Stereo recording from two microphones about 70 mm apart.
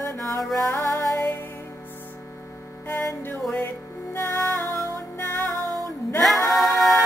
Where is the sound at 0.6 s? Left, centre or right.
Left.